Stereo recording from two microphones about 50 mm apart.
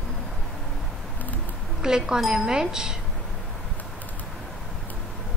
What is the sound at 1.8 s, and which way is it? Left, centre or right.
A woman's voice, centre.